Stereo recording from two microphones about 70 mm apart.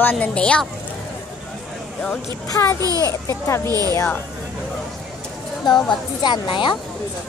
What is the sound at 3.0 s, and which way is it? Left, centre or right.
Speech, left.